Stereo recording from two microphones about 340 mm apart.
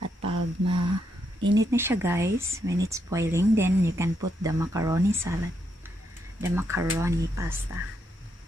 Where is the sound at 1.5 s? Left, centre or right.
Centre.